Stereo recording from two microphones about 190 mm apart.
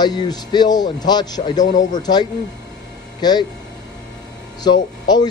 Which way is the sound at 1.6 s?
40° left (ahead or behind).